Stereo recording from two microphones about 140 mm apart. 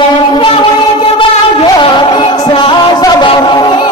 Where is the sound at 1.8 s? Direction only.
35° left (ahead or behind).